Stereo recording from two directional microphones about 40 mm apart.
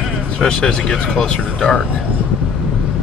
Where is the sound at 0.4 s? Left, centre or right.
Centre.